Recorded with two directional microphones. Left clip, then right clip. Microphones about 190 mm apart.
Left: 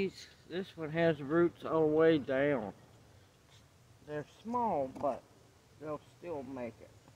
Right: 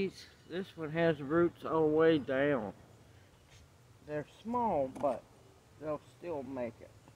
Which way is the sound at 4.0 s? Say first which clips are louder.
Right 2 dB; 10° left (ahead or behind).